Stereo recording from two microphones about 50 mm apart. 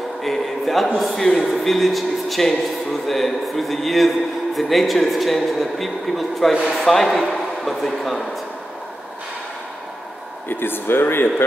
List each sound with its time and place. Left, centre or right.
0.2 s a sound: centre
0.9 s a man's voice: centre
10.5 s speech: left